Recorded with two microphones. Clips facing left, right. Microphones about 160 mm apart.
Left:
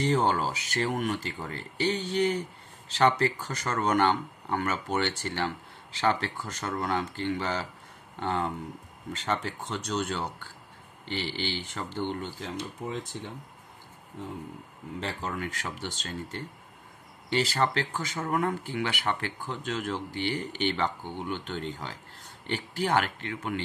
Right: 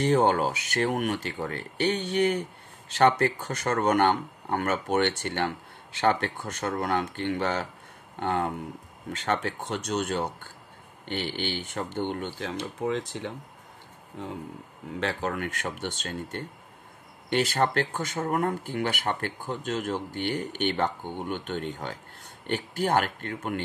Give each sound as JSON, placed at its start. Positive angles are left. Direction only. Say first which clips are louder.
{"t": 0.0, "sound": "speech", "louder": "right 3 dB", "side_deg": -60}
{"t": 15.0, "sound": "speech", "louder": "right 4 dB", "side_deg": -65}